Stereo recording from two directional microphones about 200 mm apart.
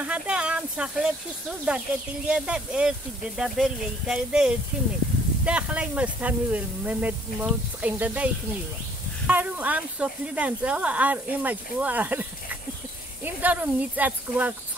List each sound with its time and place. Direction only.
0.0 s speech: 5° right (ahead or behind)
9.3 s speech: 10° right (ahead or behind)